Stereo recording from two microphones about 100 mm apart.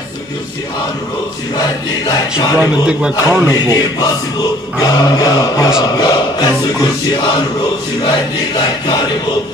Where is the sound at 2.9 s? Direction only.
10° right (ahead or behind).